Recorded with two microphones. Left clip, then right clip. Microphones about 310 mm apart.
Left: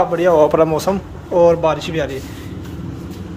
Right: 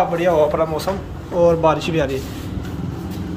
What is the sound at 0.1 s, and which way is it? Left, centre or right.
Speech, centre.